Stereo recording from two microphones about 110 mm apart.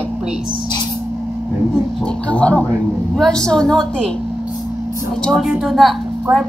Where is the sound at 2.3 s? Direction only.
10° left (ahead or behind).